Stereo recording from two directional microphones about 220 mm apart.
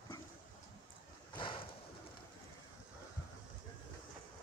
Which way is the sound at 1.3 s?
20° left (ahead or behind).